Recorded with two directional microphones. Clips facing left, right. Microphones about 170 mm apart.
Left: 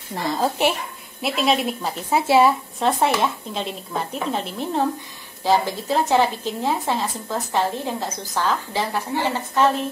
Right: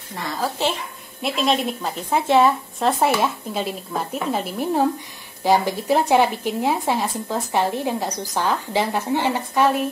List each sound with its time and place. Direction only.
1.2 s a woman's voice: centre (ahead or behind); by 9.7 s 15° right (ahead or behind)